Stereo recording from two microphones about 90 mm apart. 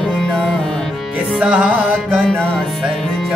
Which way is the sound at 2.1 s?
5° left (ahead or behind).